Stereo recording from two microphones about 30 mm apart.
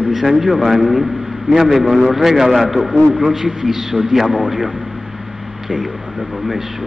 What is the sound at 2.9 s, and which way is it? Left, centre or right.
A man's voice, centre.